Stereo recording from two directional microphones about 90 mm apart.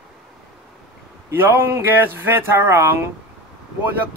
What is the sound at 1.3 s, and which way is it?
Speech, 25° right (ahead or behind).